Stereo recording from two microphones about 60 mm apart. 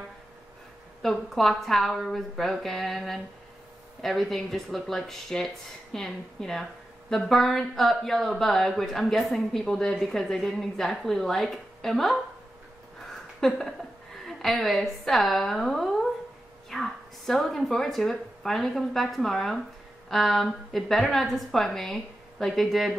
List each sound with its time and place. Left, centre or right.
1.0 s a woman's voice: centre
13.6 s a woman's voice: centre